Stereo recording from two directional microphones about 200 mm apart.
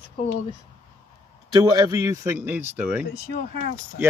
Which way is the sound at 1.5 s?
20° right (ahead or behind).